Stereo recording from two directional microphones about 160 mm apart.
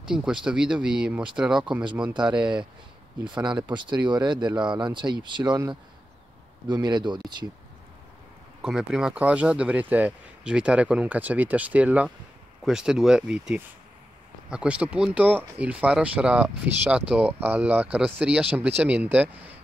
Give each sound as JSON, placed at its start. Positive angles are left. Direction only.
{"t": 0.1, "sound": "speech", "side_deg": -5}
{"t": 3.6, "sound": "speech", "side_deg": -30}
{"t": 8.6, "sound": "speech", "side_deg": -5}